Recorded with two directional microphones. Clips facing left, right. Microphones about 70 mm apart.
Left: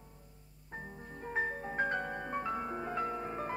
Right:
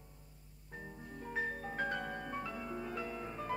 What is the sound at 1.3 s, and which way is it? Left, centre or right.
Music, left.